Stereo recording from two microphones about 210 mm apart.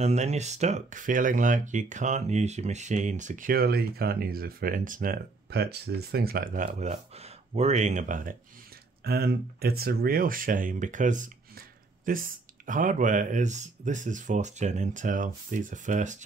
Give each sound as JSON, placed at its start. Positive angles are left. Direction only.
{"t": 0.0, "sound": "speech", "side_deg": -30}